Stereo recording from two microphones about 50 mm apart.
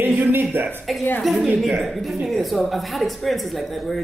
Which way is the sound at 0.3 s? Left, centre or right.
Right.